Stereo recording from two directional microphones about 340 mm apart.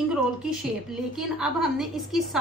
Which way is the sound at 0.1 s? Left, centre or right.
Centre.